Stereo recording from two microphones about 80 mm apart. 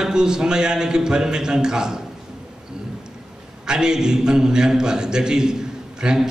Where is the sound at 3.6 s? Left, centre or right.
Centre.